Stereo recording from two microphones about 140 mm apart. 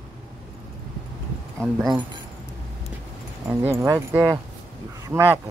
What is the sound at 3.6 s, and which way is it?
Speech, 20° right (ahead or behind).